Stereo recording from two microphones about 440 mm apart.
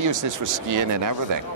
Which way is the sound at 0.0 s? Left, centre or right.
Right.